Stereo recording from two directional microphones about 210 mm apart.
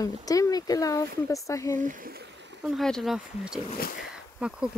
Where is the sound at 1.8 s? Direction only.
40° right (ahead or behind).